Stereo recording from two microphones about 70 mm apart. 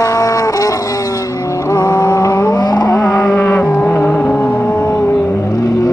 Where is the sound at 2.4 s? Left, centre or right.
Left.